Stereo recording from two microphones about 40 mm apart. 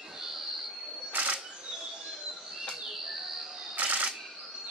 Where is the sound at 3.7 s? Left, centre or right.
Right.